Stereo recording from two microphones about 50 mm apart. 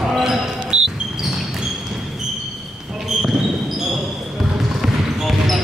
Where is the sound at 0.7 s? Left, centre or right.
Right.